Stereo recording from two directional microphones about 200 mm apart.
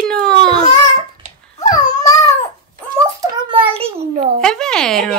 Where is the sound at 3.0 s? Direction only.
20° right (ahead or behind).